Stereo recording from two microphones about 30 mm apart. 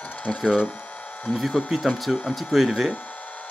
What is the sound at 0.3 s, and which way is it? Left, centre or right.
Speech, centre.